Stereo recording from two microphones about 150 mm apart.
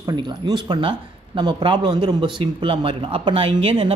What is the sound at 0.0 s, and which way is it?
Speech, 30° right (ahead or behind).